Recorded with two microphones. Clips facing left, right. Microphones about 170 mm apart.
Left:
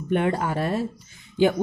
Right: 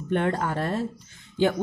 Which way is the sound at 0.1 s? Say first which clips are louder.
Left 2 dB; 10° left (ahead or behind).